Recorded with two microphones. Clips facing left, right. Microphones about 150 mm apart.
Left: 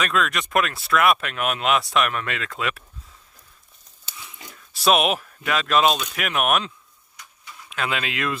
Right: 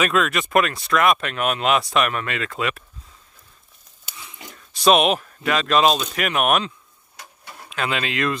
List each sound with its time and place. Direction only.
0.0 s speech: 5° right (ahead or behind)
4.7 s speech: 5° left (ahead or behind)
7.2 s a sound: 60° right (ahead or behind)
7.7 s speech: centre (ahead or behind)